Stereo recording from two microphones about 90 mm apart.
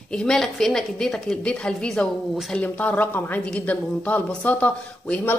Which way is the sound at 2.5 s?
15° left (ahead or behind).